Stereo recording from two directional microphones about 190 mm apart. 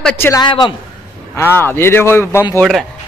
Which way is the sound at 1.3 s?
10° left (ahead or behind).